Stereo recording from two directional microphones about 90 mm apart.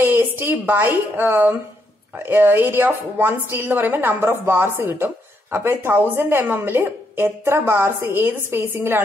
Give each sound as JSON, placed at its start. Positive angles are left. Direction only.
{"t": 0.0, "sound": "a woman's voice", "side_deg": -25}